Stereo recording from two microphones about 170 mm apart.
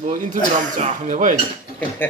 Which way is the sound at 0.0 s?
45° right (ahead or behind).